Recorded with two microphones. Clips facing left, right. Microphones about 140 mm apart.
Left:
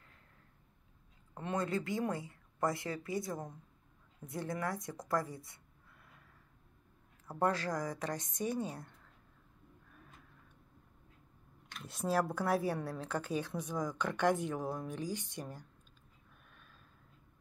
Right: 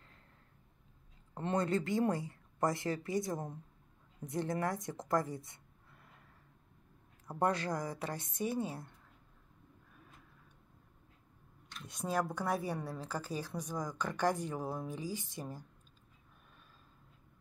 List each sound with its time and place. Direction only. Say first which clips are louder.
1.3 s a woman's voice: right 3 dB; 30° right (ahead or behind)
7.2 s a woman's voice: even; 15° right (ahead or behind)
11.8 s a woman's voice: left 2 dB; 5° left (ahead or behind)